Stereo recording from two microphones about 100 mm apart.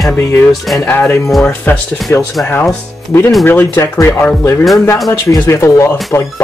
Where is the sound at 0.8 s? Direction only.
20° left (ahead or behind).